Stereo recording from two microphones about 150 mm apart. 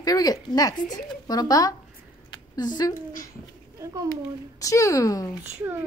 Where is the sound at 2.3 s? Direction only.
30° left (ahead or behind).